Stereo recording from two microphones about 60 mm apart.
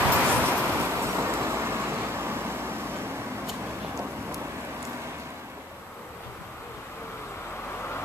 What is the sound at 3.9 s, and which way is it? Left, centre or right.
Vehicle, right.